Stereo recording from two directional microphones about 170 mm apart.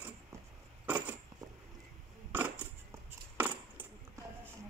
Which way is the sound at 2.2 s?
10° right (ahead or behind).